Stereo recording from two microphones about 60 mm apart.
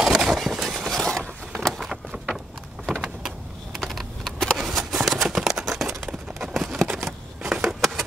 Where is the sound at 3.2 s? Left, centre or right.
Centre.